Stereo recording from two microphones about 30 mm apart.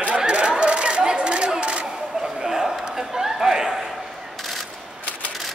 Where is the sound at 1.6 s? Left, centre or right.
Right.